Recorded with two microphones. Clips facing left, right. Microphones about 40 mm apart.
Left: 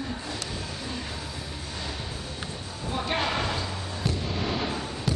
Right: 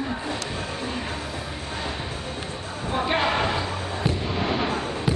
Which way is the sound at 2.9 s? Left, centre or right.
Right.